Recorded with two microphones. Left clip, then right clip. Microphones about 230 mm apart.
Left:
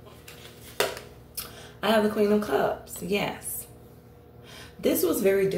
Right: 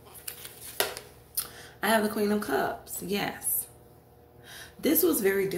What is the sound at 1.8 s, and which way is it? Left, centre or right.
Speech, right.